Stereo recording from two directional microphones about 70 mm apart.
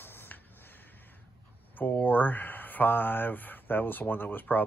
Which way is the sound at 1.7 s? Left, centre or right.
Left.